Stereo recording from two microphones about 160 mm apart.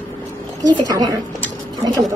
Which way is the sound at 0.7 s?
25° right (ahead or behind).